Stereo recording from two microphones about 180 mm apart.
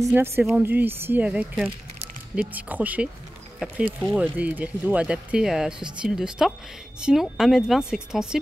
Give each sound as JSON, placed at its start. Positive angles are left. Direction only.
{"t": 0.0, "sound": "speech", "side_deg": -10}